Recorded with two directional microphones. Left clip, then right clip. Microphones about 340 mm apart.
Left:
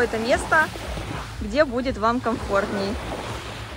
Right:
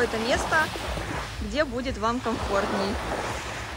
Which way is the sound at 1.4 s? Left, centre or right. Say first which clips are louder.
Left 7 dB; centre.